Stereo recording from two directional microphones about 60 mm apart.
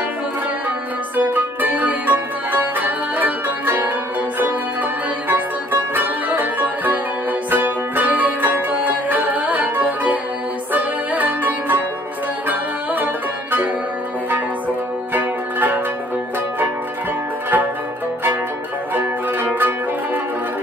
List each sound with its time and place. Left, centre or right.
1.1 s music: right
5.3 s music: right
15.1 s music: right
18.9 s music: right